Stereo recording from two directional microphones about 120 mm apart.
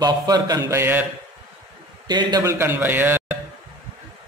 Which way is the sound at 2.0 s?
35° right (ahead or behind).